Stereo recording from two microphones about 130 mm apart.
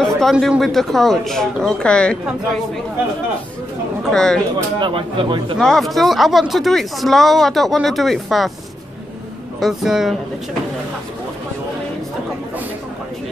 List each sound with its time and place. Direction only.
0.0 s speech: centre (ahead or behind)
4.1 s speech: 5° left (ahead or behind)
4.7 s speech: 40° right (ahead or behind)
5.6 s speech: 5° left (ahead or behind)
9.6 s speech: centre (ahead or behind)